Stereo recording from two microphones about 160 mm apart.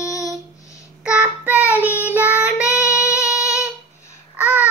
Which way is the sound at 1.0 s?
5° right (ahead or behind).